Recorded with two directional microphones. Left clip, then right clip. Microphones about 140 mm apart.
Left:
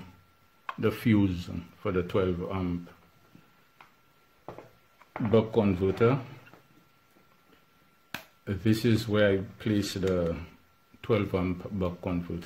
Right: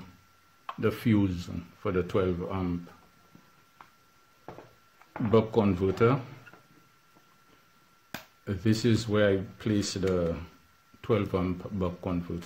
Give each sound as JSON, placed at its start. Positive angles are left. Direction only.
{"t": 0.7, "sound": "rub", "side_deg": 0}
{"t": 1.5, "sound": "speech", "side_deg": -15}
{"t": 5.3, "sound": "speech", "side_deg": -25}
{"t": 8.1, "sound": "speech", "side_deg": -15}